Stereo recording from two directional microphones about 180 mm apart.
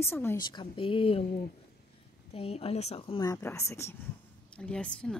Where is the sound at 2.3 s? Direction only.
35° left (ahead or behind).